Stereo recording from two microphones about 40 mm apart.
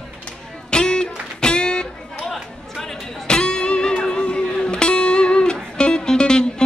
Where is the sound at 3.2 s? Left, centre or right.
Centre.